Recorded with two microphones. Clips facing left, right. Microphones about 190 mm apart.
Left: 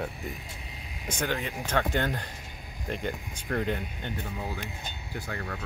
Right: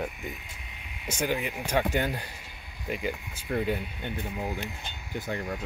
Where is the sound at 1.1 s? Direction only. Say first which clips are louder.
Right 2 dB; 10° right (ahead or behind).